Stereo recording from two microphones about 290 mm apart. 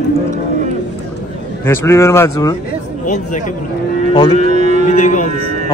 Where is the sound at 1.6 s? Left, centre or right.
Centre.